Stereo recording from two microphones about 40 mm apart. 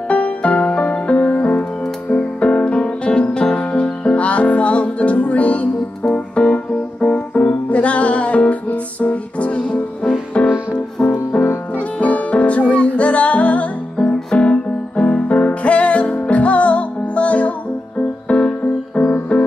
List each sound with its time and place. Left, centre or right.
0.1 s music: left
6.1 s keyboard: left
10.4 s music: left
12.0 s music: left
13.9 s music: left
19.0 s music: left